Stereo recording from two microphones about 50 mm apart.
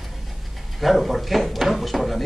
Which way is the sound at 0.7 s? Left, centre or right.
Centre.